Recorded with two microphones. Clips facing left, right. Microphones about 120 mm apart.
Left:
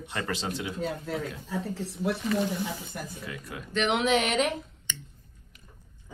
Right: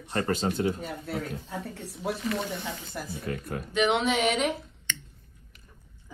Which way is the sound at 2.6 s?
55° right (ahead or behind).